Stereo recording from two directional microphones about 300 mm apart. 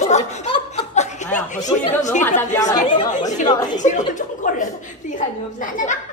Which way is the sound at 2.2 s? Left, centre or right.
Centre.